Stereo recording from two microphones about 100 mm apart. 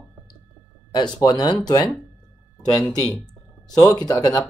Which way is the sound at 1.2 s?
40° left (ahead or behind).